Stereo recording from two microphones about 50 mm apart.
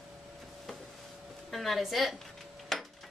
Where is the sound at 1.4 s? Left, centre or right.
Centre.